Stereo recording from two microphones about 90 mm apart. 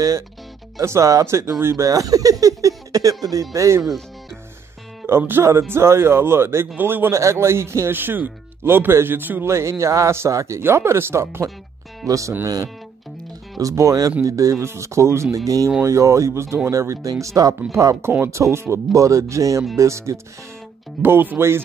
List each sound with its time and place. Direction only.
0.7 s speech: 35° right (ahead or behind)
5.0 s speech: 25° right (ahead or behind)
13.6 s speech: 40° right (ahead or behind)
21.0 s speech: 20° right (ahead or behind)